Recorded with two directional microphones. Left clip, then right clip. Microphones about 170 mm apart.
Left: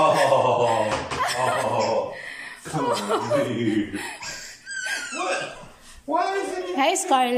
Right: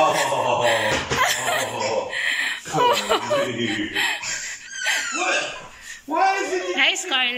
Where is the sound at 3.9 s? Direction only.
10° left (ahead or behind).